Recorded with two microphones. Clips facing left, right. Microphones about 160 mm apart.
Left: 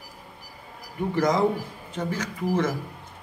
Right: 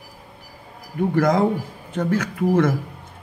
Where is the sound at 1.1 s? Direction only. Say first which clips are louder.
Right 3 dB; 55° right (ahead or behind).